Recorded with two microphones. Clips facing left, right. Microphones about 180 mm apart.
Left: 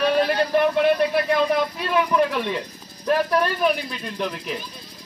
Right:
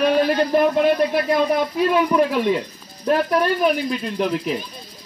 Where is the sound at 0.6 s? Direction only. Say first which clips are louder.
Right 1 dB; 40° right (ahead or behind).